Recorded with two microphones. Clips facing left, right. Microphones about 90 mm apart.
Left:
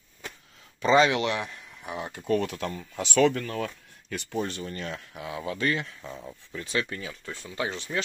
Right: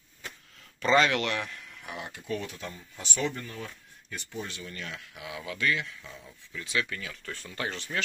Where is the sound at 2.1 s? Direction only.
55° left (ahead or behind); by 3.6 s 90° left.